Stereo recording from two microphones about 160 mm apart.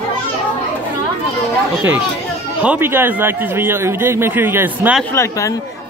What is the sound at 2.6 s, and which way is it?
A man's voice, 10° right (ahead or behind).